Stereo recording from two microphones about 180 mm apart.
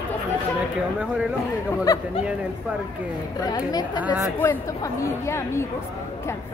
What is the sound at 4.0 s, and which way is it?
Speech, 10° right (ahead or behind).